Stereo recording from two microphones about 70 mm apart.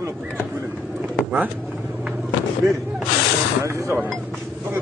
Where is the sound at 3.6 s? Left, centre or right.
Right.